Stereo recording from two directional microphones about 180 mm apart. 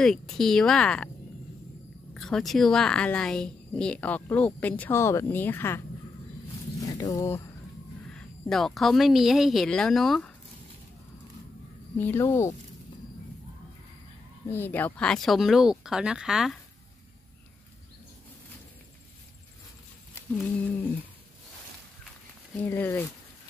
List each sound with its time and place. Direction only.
0.0 s speech: 5° left (ahead or behind)
2.1 s a woman's voice: 5° left (ahead or behind)
6.8 s speech: 20° left (ahead or behind)
8.1 s speech: 5° left (ahead or behind)
12.0 s a woman's voice: 15° left (ahead or behind)
14.5 s speech: 10° left (ahead or behind)
20.3 s a woman's voice: 5° left (ahead or behind)
22.6 s a woman's voice: 10° left (ahead or behind)